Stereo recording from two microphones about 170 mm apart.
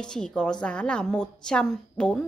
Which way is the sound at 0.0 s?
5° left (ahead or behind).